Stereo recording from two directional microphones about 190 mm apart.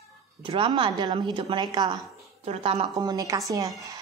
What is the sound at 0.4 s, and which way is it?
A woman's voice, 25° right (ahead or behind).